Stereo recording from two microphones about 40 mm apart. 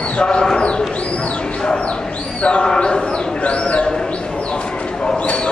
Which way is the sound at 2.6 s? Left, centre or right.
Centre.